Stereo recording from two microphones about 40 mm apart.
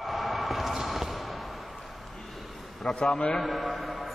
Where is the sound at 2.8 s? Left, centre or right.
Centre.